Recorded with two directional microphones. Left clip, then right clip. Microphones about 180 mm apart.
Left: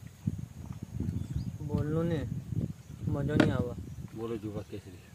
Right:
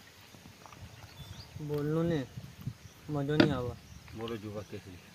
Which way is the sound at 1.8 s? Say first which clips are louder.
Right 1 dB; 45° right (ahead or behind).